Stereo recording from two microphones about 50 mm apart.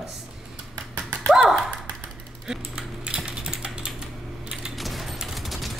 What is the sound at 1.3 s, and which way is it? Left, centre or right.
Speech, centre.